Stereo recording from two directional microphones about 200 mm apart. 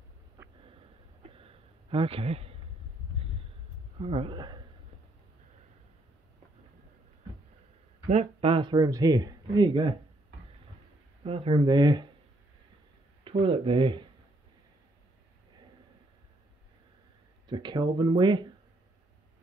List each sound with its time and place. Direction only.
0.7 s a sound: 25° right (ahead or behind)
4.0 s speech: 30° right (ahead or behind)
8.1 s speech: 30° right (ahead or behind)
11.2 s speech: 30° right (ahead or behind)
13.2 s speech: 30° right (ahead or behind)
17.5 s speech: 20° right (ahead or behind)